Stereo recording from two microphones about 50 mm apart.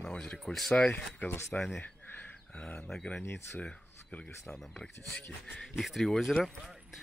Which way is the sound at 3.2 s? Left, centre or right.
Left.